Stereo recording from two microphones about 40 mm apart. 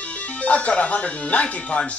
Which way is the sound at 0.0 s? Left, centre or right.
Left.